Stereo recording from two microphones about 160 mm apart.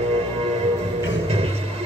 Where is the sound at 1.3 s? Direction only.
40° right (ahead or behind).